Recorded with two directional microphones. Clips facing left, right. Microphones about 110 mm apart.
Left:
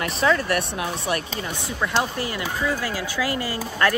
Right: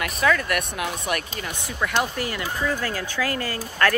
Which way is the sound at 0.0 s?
30° left (ahead or behind).